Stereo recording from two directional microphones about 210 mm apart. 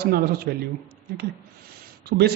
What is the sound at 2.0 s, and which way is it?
Speech, 50° right (ahead or behind).